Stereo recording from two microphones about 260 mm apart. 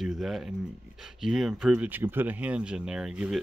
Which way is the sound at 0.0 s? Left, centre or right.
Centre.